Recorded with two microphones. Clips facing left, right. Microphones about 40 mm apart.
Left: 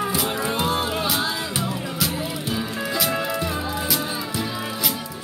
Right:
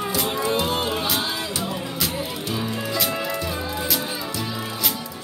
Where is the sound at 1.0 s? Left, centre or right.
Centre.